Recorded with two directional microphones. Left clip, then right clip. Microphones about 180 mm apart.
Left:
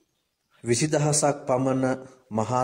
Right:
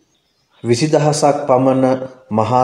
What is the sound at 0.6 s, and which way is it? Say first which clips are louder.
A man's voice: right 10 dB; 30° left (ahead or behind).